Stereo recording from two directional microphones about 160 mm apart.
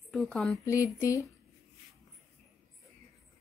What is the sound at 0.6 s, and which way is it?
Speech, 20° left (ahead or behind).